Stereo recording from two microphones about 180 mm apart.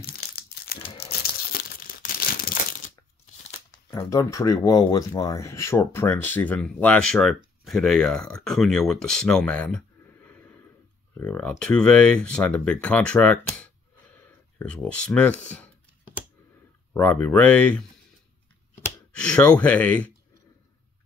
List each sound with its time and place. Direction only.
0.0 s crumpling: 60° left (ahead or behind)
0.8 s tearing: 35° left (ahead or behind)
1.5 s crumpling: 55° left (ahead or behind)
4.1 s speech: 15° left (ahead or behind)
16.9 s speech: 10° left (ahead or behind)
19.1 s speech: 5° left (ahead or behind)